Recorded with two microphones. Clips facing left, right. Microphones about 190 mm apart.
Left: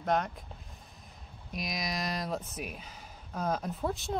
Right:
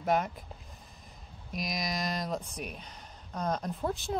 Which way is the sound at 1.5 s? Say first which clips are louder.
Right 1 dB; centre (ahead or behind).